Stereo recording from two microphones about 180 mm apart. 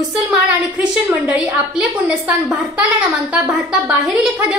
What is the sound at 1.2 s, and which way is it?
A woman's voice, 5° right (ahead or behind).